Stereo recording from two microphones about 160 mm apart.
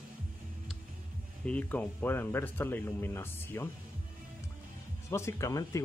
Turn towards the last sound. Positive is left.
turn(degrees=20)  # may be behind; listen again after turning